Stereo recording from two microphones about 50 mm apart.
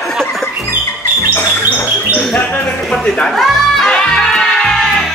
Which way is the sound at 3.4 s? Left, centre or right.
Centre.